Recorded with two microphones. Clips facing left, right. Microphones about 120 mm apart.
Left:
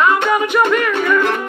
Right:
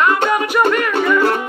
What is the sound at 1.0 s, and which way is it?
Music, 35° right (ahead or behind).